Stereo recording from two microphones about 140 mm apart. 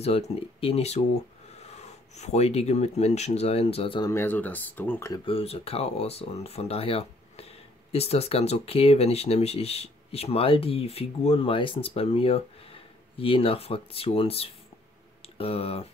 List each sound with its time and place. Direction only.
0.0 s speech: 45° left (ahead or behind)
4.0 s speech: 20° left (ahead or behind)
5.2 s speech: 45° left (ahead or behind)